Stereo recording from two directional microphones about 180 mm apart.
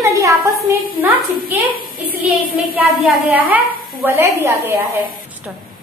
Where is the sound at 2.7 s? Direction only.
10° right (ahead or behind).